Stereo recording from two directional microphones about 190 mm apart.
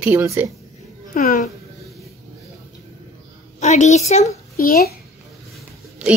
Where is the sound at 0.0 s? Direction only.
15° right (ahead or behind).